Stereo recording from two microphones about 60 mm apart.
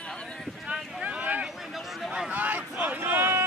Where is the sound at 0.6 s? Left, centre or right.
Right.